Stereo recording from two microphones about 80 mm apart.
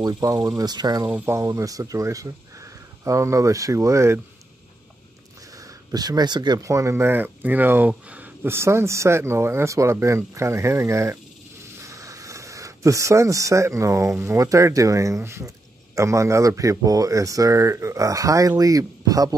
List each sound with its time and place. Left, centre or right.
0.0 s speech: right
1.0 s speech: right
1.4 s speech: right
5.6 s speech: right
6.6 s speech: right; by 8.3 s centre
8.5 s speech: right
11.8 s a sound: right
14.1 s speech: right